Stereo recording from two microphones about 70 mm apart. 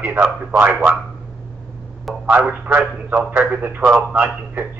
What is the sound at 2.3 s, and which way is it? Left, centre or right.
A man's voice, right.